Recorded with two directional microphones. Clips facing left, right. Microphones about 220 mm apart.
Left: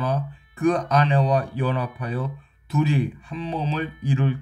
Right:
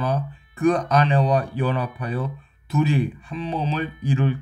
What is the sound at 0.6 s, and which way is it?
Speech, 40° right (ahead or behind).